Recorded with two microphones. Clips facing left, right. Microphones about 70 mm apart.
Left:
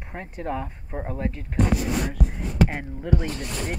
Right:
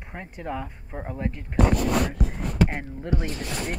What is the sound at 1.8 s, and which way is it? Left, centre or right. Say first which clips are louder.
Speech: right 2 dB; right.